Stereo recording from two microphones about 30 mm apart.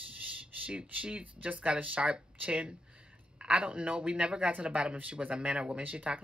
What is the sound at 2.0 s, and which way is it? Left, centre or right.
Speech, right.